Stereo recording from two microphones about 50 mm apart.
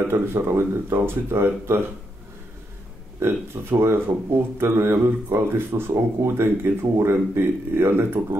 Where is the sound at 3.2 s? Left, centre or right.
Right.